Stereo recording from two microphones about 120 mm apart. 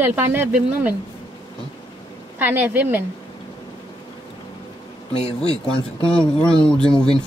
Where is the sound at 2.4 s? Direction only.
15° right (ahead or behind).